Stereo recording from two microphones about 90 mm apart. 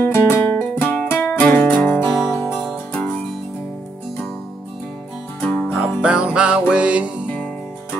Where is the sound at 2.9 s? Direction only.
25° left (ahead or behind).